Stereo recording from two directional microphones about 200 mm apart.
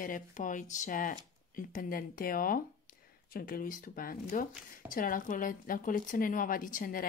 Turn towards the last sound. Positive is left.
turn(degrees=45)  # may be behind; listen again after turning